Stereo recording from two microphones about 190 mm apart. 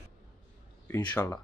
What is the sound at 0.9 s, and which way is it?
Speech, 10° left (ahead or behind).